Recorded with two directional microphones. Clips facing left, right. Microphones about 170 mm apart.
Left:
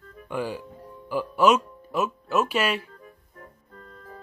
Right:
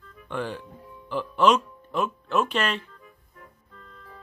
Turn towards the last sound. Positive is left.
turn(degrees=45)  # may be behind; listen again after turning